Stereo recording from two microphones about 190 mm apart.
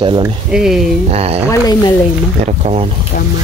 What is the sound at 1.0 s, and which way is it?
Speech, 35° right (ahead or behind).